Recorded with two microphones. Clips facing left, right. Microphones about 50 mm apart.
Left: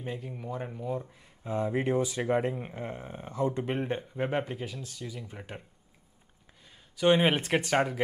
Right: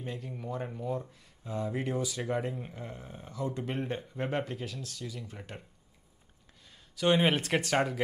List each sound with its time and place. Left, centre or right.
0.0 s speech: centre
1.1 s speech: left
3.3 s speech: centre
7.0 s speech: centre